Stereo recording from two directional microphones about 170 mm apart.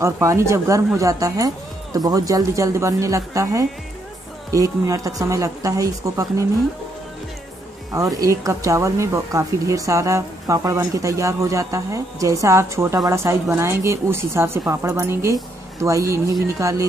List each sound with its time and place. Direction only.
0.0 s speech: 15° right (ahead or behind)
7.9 s speech: 20° right (ahead or behind)